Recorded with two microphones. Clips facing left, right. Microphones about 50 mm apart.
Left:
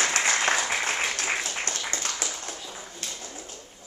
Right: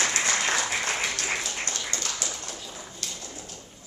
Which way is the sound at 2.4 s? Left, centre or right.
Left.